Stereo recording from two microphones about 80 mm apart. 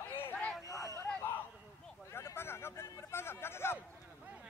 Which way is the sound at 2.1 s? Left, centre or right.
Left.